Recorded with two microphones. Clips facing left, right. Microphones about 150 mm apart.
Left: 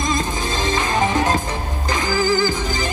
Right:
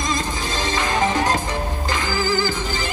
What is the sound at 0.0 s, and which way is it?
Music, 20° left (ahead or behind).